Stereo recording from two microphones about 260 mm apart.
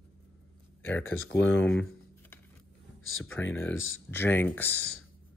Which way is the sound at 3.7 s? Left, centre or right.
Left.